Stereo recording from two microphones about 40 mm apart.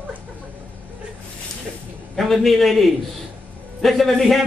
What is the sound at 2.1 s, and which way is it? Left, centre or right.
A man's voice, centre.